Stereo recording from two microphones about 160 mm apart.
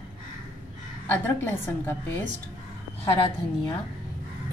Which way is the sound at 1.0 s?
10° left (ahead or behind).